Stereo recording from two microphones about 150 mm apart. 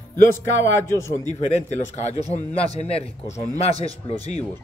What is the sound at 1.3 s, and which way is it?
Speech, 50° left (ahead or behind).